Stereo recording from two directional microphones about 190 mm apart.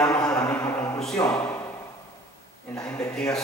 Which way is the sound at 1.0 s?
5° left (ahead or behind).